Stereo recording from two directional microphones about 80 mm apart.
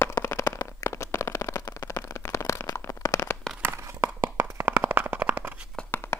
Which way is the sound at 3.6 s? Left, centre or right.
Right.